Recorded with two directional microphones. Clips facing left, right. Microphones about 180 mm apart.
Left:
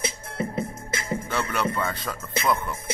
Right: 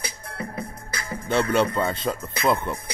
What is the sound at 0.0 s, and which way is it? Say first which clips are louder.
Music: left 4 dB; 25° left (ahead or behind).